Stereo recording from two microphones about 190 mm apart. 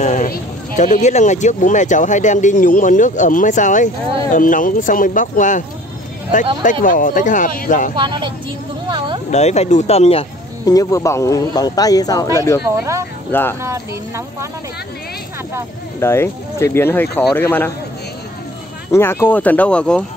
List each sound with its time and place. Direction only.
0.0 s speech: 40° left (ahead or behind)
6.6 s speech: 45° left (ahead or behind)
7.9 s speech: 25° right (ahead or behind)
8.8 s a sound: 25° right (ahead or behind)
9.3 s speech: 35° left (ahead or behind)
10.6 s speech: 20° left (ahead or behind)
12.6 s speech: 15° right (ahead or behind)
13.3 s speech: 10° left (ahead or behind)
13.6 s speech: 15° right (ahead or behind)
16.0 s speech: 15° left (ahead or behind)
18.9 s speech: 15° left (ahead or behind)